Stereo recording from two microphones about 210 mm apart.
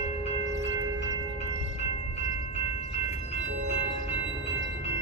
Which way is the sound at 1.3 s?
30° left (ahead or behind).